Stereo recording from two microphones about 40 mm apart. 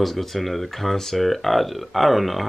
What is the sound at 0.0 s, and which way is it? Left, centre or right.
Speech, centre.